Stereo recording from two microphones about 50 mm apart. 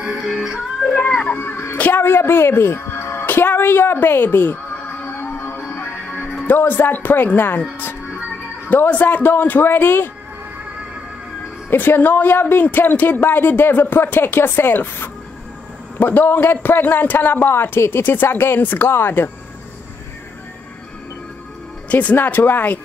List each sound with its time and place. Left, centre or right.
0.0 s music: centre
1.3 s a woman's voice: left
4.8 s music: left
6.4 s speech: left
8.6 s speech: left
9.3 s speech: left
11.7 s speech: left
21.8 s speech: left
22.1 s speech: left